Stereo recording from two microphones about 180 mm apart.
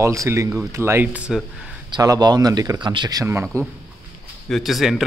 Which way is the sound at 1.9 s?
20° right (ahead or behind).